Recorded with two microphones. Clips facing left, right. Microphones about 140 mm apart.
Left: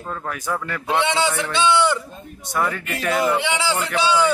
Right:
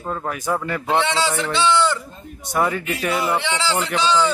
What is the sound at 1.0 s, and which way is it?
Speech, 15° left (ahead or behind).